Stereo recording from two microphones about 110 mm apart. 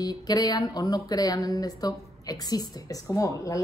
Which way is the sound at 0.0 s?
35° left (ahead or behind).